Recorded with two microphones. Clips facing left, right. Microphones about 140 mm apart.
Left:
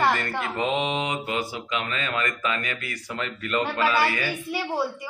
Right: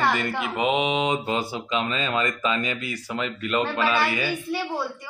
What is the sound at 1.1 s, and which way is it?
Speech, 25° right (ahead or behind).